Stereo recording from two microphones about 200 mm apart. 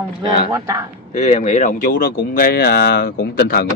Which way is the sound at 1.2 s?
35° left (ahead or behind).